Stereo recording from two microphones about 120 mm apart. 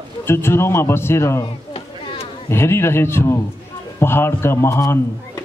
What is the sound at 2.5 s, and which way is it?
A man's voice, 20° left (ahead or behind).